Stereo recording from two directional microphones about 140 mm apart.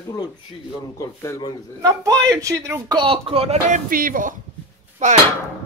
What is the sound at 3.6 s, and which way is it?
Speech, 75° right (ahead or behind).